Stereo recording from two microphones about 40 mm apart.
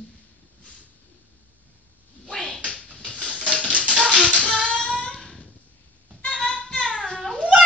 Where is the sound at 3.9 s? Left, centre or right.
Right.